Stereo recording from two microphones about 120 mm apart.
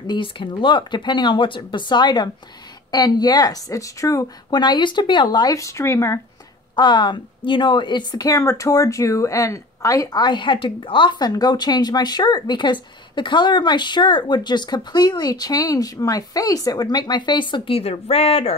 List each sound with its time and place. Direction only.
0.0 s a woman's voice: 40° left (ahead or behind); by 6.2 s 25° left (ahead or behind)
6.7 s a woman's voice: 40° left (ahead or behind)